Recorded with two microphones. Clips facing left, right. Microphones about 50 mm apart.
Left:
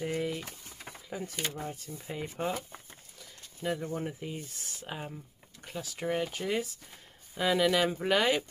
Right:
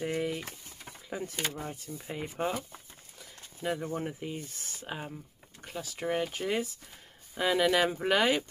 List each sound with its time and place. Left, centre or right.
0.0 s a sound: centre
1.1 s speech: centre
3.6 s speech: centre